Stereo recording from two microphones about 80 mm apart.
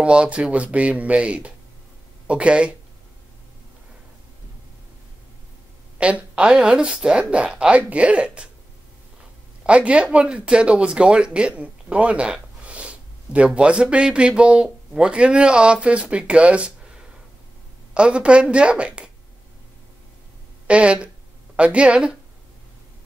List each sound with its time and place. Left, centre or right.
0.0 s speech: centre
5.9 s speech: centre
9.7 s speech: centre
17.9 s speech: centre
20.6 s speech: centre